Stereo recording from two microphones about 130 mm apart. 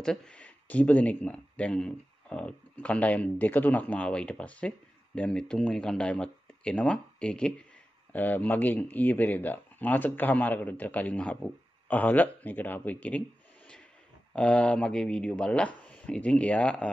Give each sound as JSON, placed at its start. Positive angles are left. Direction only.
{"t": 0.0, "sound": "speech", "side_deg": 5}
{"t": 14.3, "sound": "speech", "side_deg": 10}